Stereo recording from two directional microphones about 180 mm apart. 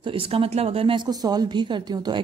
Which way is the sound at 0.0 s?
30° right (ahead or behind).